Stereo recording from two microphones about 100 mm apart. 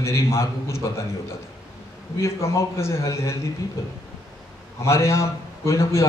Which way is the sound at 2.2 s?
30° left (ahead or behind).